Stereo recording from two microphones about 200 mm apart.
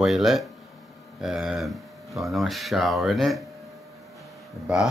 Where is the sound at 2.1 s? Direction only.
Centre (ahead or behind).